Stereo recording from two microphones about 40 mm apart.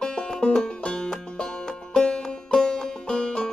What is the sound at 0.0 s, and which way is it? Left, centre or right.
Music, centre.